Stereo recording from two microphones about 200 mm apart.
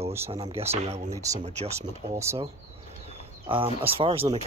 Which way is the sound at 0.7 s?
30° right (ahead or behind).